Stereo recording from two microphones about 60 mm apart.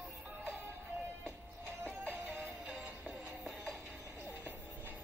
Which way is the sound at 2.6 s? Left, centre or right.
Centre.